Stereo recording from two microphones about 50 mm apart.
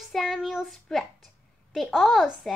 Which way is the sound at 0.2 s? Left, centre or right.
Centre.